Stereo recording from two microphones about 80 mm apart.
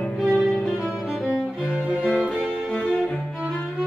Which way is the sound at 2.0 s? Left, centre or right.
Centre.